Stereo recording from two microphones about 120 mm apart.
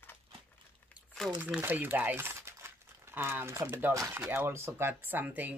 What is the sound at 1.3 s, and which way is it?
Speech, 15° right (ahead or behind).